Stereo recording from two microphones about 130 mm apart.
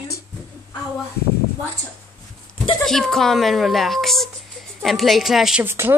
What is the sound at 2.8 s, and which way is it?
Speech, 5° left (ahead or behind).